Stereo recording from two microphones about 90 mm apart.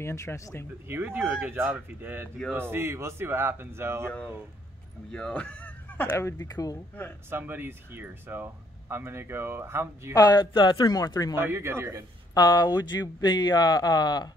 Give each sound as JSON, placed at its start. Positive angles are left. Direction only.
{"t": 0.0, "sound": "speech", "side_deg": 30}
{"t": 0.8, "sound": "speech", "side_deg": -25}
{"t": 5.1, "sound": "speech", "side_deg": 10}
{"t": 6.1, "sound": "speech", "side_deg": 30}
{"t": 6.4, "sound": "speech", "side_deg": 45}
{"t": 7.2, "sound": "speech", "side_deg": -25}
{"t": 10.1, "sound": "speech", "side_deg": 45}
{"t": 10.5, "sound": "speech", "side_deg": 60}
{"t": 11.3, "sound": "speech", "side_deg": -25}
{"t": 12.4, "sound": "speech", "side_deg": 45}